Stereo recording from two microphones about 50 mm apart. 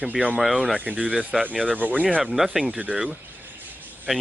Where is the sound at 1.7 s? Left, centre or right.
Right.